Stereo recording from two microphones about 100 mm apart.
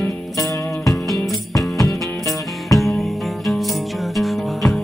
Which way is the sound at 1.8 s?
35° left (ahead or behind).